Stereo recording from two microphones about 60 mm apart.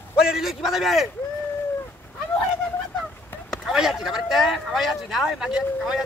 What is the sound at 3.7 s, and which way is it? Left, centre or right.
A man's voice, centre.